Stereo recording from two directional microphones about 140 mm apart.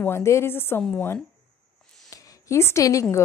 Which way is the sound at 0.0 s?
20° left (ahead or behind).